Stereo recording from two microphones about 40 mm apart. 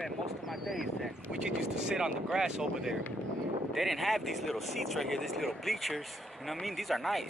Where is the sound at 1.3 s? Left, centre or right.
Centre.